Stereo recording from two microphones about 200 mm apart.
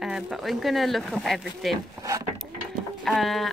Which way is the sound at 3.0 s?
Centre (ahead or behind).